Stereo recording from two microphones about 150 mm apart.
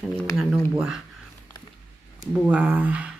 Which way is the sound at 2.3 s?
5° right (ahead or behind).